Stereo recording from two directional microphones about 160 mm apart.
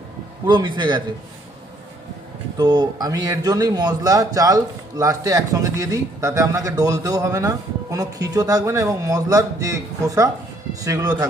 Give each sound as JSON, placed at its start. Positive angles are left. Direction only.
{"t": 0.5, "sound": "speech", "side_deg": -30}
{"t": 2.5, "sound": "speech", "side_deg": -25}